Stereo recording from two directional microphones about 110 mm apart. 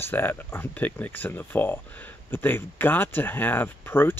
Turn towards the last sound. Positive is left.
turn(degrees=20)  # may be behind; listen again after turning